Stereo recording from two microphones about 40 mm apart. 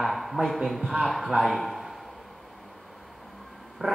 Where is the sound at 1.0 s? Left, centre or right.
Centre.